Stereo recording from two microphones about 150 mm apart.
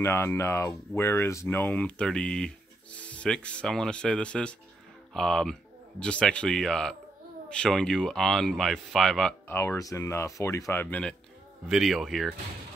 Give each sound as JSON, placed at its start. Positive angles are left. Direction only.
{"t": 0.0, "sound": "speech", "side_deg": 15}
{"t": 9.5, "sound": "speech", "side_deg": 15}